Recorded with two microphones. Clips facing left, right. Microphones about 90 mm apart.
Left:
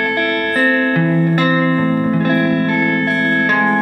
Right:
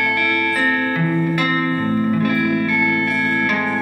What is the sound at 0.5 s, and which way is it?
Music, 40° left (ahead or behind).